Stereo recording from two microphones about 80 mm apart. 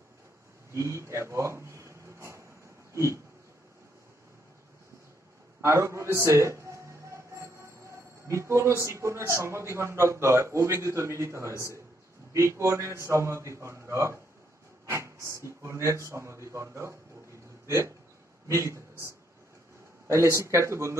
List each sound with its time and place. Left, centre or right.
0.7 s speech: right
2.9 s a sound: right
5.6 s music: right
8.3 s a man's voice: right